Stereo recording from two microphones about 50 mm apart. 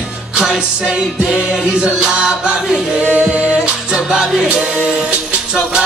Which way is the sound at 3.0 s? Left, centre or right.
Right.